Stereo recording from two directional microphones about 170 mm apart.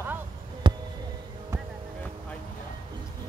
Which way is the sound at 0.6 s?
30° right (ahead or behind).